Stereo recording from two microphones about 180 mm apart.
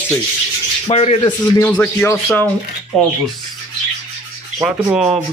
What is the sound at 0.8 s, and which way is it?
Speech, 35° left (ahead or behind).